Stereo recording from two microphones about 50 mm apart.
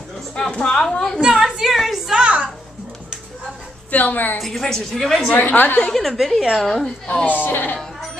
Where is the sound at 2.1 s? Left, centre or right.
Right.